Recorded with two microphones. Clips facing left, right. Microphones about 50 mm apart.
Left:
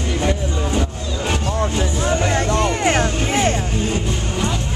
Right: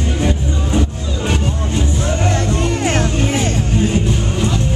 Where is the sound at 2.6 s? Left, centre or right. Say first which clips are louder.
Even; centre.